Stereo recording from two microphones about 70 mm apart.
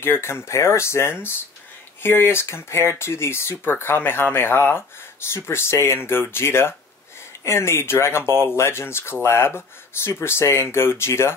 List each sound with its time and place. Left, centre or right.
0.0 s speech: left